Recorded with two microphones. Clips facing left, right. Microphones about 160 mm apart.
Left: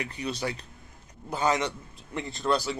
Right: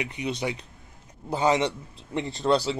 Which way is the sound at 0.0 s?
20° right (ahead or behind).